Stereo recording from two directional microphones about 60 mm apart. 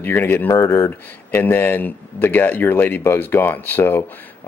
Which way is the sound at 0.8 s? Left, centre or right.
Left.